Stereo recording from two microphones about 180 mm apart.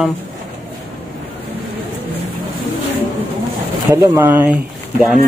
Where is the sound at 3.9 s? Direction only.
10° right (ahead or behind).